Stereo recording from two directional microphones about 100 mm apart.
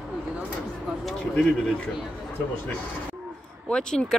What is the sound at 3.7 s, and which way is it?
Speech, 10° left (ahead or behind).